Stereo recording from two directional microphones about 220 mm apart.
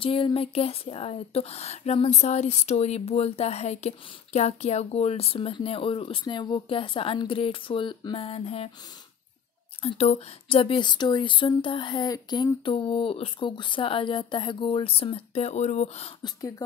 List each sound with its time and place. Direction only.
0.0 s speech: 25° left (ahead or behind)
9.8 s speech: 25° left (ahead or behind)
16.3 s speech: 15° left (ahead or behind)